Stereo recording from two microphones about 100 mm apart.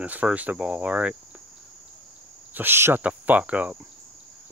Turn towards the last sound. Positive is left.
turn(degrees=-15)  # may be behind; listen again after turning